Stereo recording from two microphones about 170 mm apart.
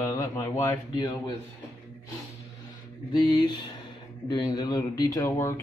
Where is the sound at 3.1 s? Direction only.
25° left (ahead or behind).